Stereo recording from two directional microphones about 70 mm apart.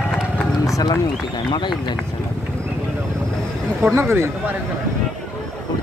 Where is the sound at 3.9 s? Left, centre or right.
Right.